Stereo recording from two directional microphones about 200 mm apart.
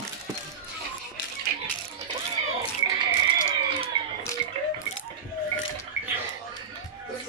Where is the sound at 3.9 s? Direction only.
25° right (ahead or behind).